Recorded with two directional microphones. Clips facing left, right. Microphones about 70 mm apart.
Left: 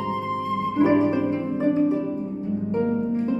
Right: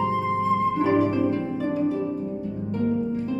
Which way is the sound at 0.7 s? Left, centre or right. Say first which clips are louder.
Left 2 dB; left.